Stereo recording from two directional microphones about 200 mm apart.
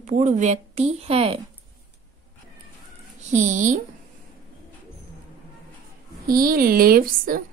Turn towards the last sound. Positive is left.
turn(degrees=-45)  # may be behind; listen again after turning